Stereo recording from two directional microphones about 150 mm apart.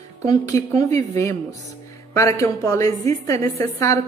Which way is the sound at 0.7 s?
50° right (ahead or behind).